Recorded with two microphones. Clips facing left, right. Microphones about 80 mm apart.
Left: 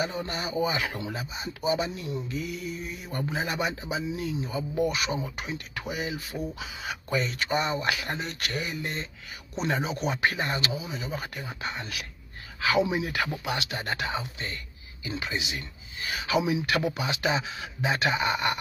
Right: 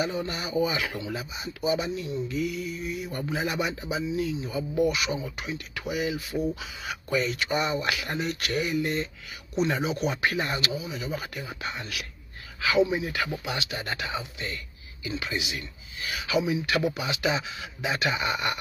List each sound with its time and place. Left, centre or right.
0.3 s speech: left
12.7 s speech: left
13.4 s speech: left
15.0 s speech: left